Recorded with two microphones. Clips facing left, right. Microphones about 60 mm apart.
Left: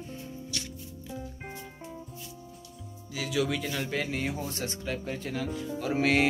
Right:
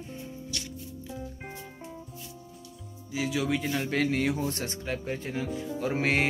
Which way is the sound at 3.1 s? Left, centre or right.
Right.